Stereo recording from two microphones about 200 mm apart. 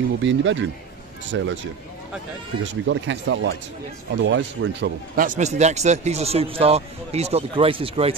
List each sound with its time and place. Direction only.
0.2 s speech: 65° right (ahead or behind)
5.2 s speech: 40° right (ahead or behind)